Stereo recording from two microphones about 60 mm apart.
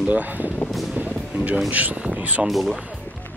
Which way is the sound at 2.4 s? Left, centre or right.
Centre.